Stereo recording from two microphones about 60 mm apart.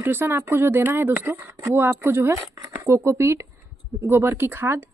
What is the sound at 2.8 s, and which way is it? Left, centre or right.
Speech, right.